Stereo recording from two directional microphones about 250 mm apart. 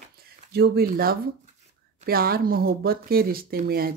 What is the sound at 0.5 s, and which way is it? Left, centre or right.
Speech, right.